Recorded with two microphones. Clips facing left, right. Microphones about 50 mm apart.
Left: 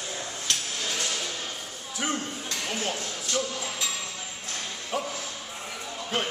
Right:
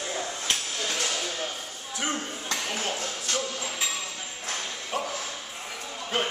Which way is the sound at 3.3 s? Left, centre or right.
Right.